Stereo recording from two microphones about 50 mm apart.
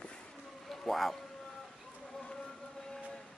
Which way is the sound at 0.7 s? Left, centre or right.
Centre.